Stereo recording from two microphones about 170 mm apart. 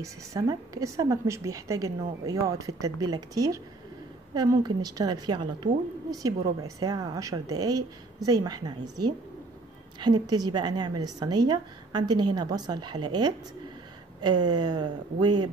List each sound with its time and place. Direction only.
0.0 s a woman's voice: 20° right (ahead or behind)